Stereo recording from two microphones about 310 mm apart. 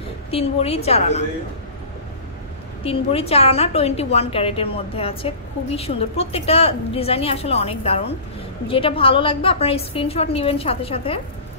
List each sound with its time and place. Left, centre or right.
0.3 s a woman's voice: centre
2.8 s a woman's voice: centre